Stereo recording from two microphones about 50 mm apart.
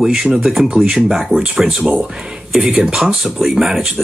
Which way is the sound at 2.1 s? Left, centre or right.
Centre.